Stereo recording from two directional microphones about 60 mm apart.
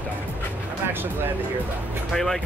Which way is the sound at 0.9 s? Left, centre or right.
Right.